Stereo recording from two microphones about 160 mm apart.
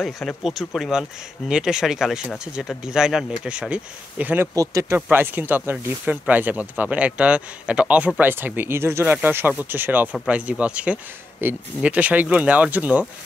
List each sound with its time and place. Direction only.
0.0 s speech: centre (ahead or behind)